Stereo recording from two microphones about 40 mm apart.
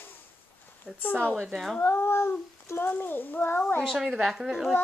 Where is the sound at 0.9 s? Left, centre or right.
Right.